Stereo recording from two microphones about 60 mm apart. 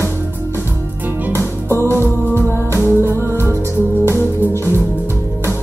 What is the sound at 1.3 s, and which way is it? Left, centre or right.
Music, right.